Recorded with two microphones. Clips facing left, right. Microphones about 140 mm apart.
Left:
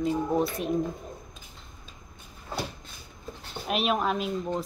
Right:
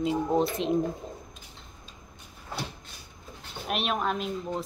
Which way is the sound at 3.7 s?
Centre (ahead or behind).